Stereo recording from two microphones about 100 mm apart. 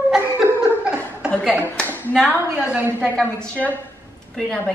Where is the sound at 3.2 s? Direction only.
15° left (ahead or behind).